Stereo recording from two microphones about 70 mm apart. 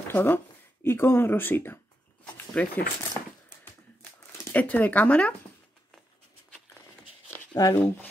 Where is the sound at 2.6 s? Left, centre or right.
Centre.